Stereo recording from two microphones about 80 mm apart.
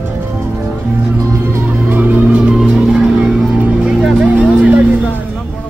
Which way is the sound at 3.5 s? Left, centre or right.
Centre.